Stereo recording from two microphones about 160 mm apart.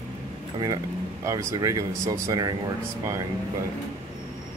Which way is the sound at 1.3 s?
20° right (ahead or behind).